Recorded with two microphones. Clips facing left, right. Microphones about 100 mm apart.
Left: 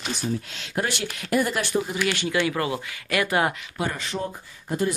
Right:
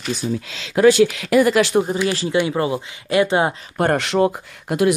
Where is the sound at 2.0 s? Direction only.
25° right (ahead or behind).